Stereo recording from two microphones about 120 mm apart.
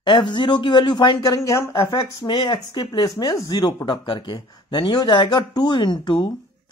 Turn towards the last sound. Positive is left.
turn(degrees=40)  # may be behind; listen again after turning